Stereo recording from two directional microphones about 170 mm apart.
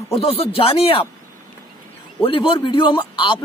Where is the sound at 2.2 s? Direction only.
30° left (ahead or behind).